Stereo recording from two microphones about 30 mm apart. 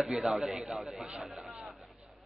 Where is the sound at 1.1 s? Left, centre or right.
Right.